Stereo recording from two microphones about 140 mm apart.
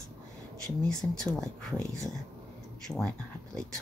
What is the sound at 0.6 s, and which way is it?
Speech, 5° left (ahead or behind).